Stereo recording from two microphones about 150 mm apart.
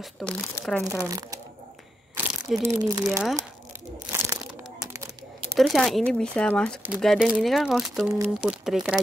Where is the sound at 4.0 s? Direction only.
25° right (ahead or behind).